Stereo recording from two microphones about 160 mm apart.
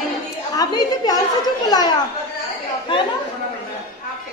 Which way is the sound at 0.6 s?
25° left (ahead or behind).